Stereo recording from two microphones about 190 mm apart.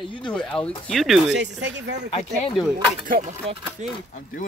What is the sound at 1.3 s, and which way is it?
Speech, 70° right (ahead or behind).